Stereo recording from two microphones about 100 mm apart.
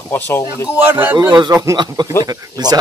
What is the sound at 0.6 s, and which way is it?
Speech, 20° right (ahead or behind).